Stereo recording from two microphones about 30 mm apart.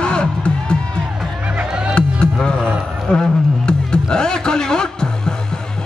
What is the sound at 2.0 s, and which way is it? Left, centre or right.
Music, left.